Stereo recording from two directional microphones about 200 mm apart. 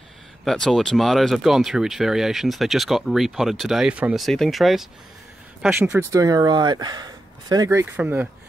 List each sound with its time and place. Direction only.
0.5 s speech: centre (ahead or behind)